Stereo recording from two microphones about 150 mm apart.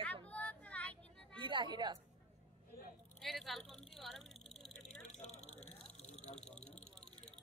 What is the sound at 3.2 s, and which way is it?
Speech, centre (ahead or behind).